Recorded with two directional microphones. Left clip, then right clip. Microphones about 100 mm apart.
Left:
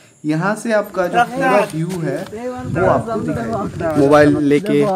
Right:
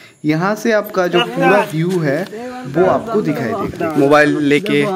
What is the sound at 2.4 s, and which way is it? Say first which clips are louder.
Speech: right 1 dB; 35° left (ahead or behind).